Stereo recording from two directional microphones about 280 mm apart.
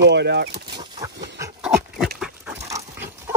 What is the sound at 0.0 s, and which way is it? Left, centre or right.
Speech, right.